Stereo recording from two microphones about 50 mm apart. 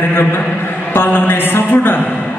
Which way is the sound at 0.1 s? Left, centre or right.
Left.